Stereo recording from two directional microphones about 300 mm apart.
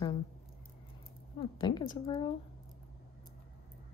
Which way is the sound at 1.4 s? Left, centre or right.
Centre.